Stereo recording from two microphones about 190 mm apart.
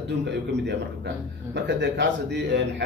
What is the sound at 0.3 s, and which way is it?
Speech, 65° right (ahead or behind).